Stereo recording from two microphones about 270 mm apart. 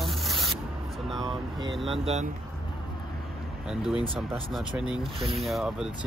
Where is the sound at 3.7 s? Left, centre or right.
Centre.